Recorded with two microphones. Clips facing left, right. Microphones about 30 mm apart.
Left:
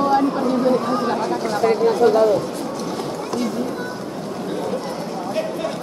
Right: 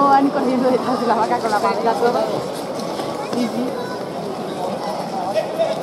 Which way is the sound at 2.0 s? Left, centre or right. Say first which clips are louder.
Left 6 dB; centre.